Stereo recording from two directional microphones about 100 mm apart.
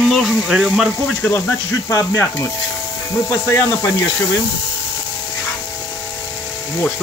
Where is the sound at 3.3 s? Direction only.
30° left (ahead or behind).